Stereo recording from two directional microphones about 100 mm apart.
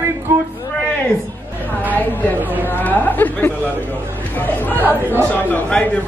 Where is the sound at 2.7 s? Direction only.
20° left (ahead or behind).